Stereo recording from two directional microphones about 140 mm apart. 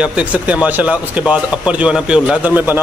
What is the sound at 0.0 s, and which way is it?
A man's voice, 10° right (ahead or behind).